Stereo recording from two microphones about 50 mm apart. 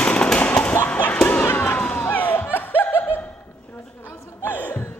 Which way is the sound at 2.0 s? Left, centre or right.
Left.